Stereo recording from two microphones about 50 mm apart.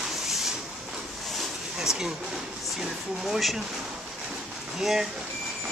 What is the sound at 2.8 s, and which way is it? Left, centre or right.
Speech, centre.